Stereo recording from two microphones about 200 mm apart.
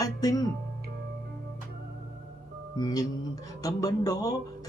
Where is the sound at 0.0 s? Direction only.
20° left (ahead or behind).